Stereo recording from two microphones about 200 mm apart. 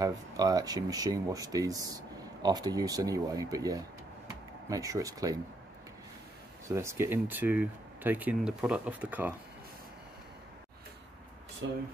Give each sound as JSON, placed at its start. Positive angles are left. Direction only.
{"t": 0.0, "sound": "speech", "side_deg": -20}
{"t": 6.7, "sound": "speech", "side_deg": -15}